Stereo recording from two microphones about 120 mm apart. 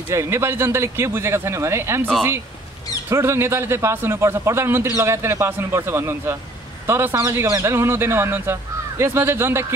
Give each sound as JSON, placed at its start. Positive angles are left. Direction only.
{"t": 0.1, "sound": "a man's voice", "side_deg": -20}
{"t": 3.1, "sound": "a man's voice", "side_deg": -20}